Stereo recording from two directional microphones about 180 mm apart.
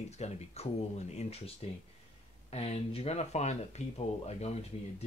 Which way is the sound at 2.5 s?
35° left (ahead or behind).